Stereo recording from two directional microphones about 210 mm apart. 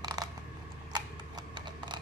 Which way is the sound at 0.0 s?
20° right (ahead or behind).